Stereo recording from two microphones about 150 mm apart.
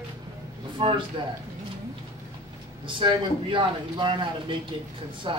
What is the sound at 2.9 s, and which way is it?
Speech, 35° right (ahead or behind).